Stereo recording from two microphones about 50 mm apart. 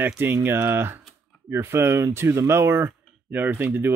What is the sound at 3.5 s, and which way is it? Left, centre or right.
Speech, right.